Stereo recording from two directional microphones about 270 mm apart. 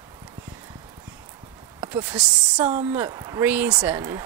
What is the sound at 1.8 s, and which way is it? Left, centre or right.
Speech, centre.